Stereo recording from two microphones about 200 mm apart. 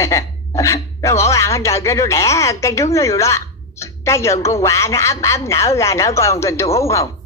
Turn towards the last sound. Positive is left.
turn(degrees=15)  # may be behind; listen again after turning